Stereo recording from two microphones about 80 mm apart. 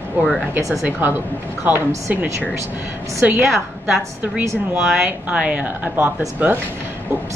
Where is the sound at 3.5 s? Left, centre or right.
Centre.